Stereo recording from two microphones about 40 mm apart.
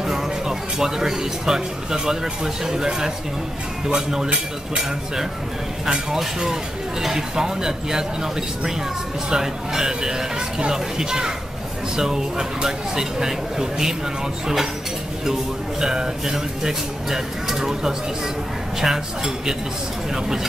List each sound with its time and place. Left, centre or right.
0.0 s speech: centre
6.4 s speech: centre
15.8 s speech: centre